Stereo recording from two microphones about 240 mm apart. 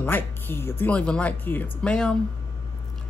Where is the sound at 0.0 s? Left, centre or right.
Centre.